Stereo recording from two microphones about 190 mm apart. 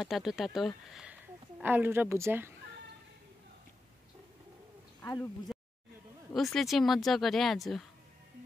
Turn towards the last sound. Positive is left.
turn(degrees=0)  # may be behind; listen again after turning